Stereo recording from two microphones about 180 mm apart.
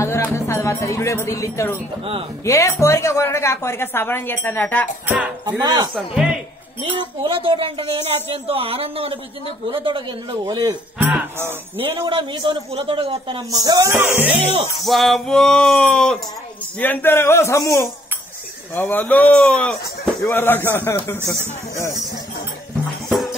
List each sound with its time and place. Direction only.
0.0 s a woman's voice: 15° left (ahead or behind)
5.0 s music: 10° right (ahead or behind)
5.6 s a man's voice: 25° right (ahead or behind)
5.9 s a sound: 5° right (ahead or behind)
7.2 s a man's voice: 30° right (ahead or behind)
11.0 s music: 10° right (ahead or behind)
11.8 s a man's voice: 25° right (ahead or behind)
13.5 s music: 20° right (ahead or behind)
14.3 s speech: 35° right (ahead or behind)
14.9 s a sound: centre (ahead or behind)
16.8 s a woman's voice: 10° left (ahead or behind)
23.0 s music: centre (ahead or behind)